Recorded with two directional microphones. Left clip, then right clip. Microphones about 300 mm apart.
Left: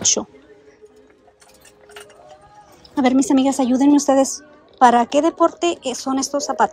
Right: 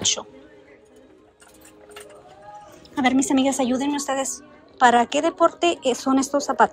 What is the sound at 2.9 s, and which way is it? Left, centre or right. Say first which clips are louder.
Speech: left 4 dB; centre.